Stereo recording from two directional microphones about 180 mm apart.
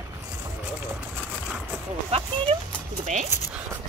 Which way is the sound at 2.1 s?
30° right (ahead or behind).